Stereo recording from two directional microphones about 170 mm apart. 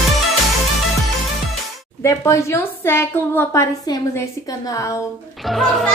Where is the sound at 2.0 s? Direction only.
15° left (ahead or behind).